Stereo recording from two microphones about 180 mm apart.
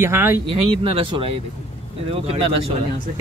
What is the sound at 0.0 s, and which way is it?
Speech, 15° right (ahead or behind).